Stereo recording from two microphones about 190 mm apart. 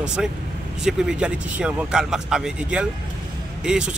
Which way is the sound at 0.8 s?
5° right (ahead or behind).